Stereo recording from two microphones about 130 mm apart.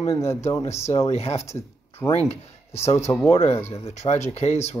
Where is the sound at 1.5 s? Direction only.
20° left (ahead or behind).